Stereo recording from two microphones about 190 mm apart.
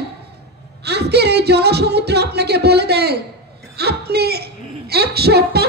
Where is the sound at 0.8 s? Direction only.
60° right (ahead or behind).